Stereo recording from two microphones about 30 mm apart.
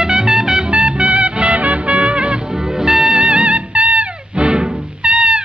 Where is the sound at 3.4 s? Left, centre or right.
Right.